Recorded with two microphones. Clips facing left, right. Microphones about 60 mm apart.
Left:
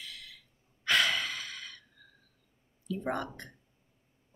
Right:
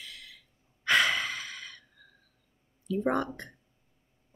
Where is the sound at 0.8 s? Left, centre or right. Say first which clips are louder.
Right 3 dB; right.